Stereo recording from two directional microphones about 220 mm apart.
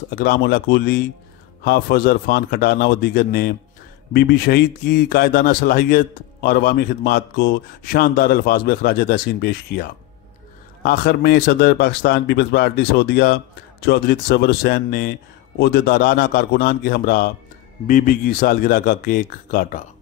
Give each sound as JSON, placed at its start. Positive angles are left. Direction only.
{"t": 0.1, "sound": "a man's voice", "side_deg": 45}